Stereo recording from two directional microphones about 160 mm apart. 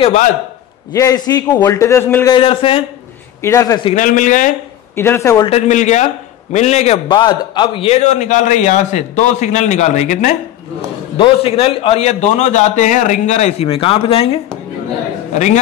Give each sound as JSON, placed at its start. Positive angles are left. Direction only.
{"t": 0.0, "sound": "a man's voice", "side_deg": 45}
{"t": 0.9, "sound": "a man's voice", "side_deg": 20}
{"t": 2.3, "sound": "speech", "side_deg": 35}
{"t": 3.4, "sound": "a man's voice", "side_deg": 20}
{"t": 3.9, "sound": "a man's voice", "side_deg": 55}
{"t": 4.9, "sound": "speech", "side_deg": 15}
{"t": 5.5, "sound": "a man's voice", "side_deg": 45}
{"t": 7.1, "sound": "a man's voice", "side_deg": 30}
{"t": 11.1, "sound": "a man's voice", "side_deg": 35}
{"t": 15.3, "sound": "a man's voice", "side_deg": 45}